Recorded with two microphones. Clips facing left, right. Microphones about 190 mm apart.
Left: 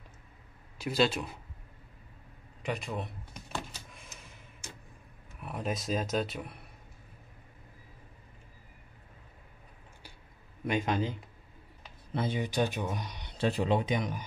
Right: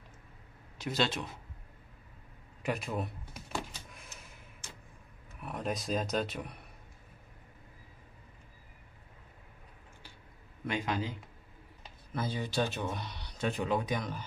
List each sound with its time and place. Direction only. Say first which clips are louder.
0.7 s speech: left 4 dB; 10° left (ahead or behind)
2.6 s a sound: right 1 dB; centre (ahead or behind)
5.4 s a man's voice: left 1 dB; centre (ahead or behind)
10.7 s speech: left 4 dB; 20° left (ahead or behind)
12.1 s speech: left 3 dB; 25° left (ahead or behind)
13.4 s speech: left 3 dB; 30° left (ahead or behind)